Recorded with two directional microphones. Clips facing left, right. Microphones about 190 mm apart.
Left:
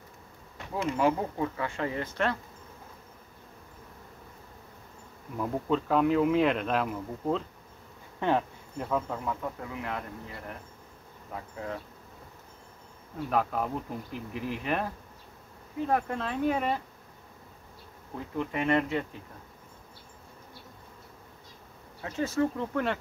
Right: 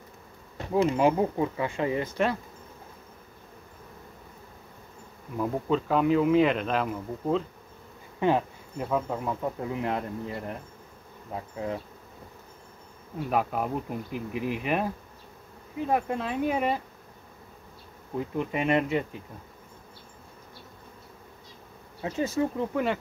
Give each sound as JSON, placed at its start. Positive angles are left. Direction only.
{"t": 0.6, "sound": "speech", "side_deg": -30}
{"t": 0.9, "sound": "speech", "side_deg": -20}
{"t": 5.4, "sound": "speech", "side_deg": 0}
{"t": 11.3, "sound": "speech", "side_deg": -20}
{"t": 13.3, "sound": "speech", "side_deg": -10}
{"t": 15.9, "sound": "speech", "side_deg": -10}
{"t": 18.1, "sound": "speech", "side_deg": -15}
{"t": 22.0, "sound": "speech", "side_deg": -15}